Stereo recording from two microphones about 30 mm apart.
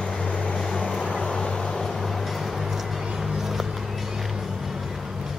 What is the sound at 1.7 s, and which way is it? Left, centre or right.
Music, centre.